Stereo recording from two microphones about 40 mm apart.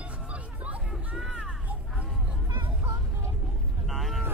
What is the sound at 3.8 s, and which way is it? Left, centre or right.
Vehicle, centre.